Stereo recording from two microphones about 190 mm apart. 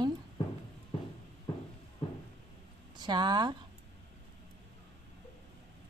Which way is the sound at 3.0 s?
25° right (ahead or behind).